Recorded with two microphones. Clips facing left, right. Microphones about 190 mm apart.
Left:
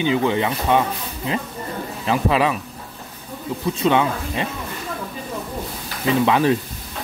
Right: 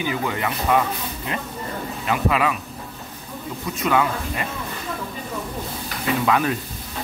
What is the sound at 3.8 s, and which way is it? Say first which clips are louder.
Speech: left 2 dB; 25° left (ahead or behind).